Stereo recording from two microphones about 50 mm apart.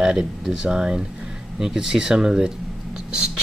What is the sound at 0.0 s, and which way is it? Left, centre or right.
Speech, centre.